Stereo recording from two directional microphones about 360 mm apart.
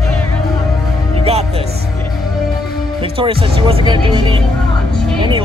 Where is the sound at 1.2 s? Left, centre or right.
Centre.